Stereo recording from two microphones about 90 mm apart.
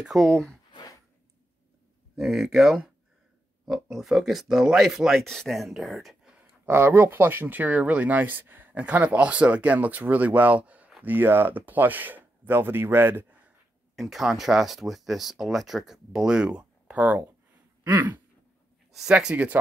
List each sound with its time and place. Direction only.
0.1 s speech: centre (ahead or behind)
2.1 s speech: 5° right (ahead or behind)
6.6 s speech: 25° right (ahead or behind)
13.9 s speech: centre (ahead or behind); by 18.2 s 20° right (ahead or behind)
18.9 s speech: 5° right (ahead or behind)